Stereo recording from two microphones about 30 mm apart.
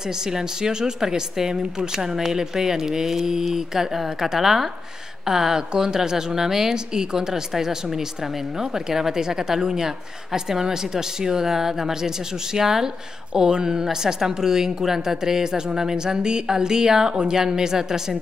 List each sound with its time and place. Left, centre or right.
0.3 s a woman's voice: centre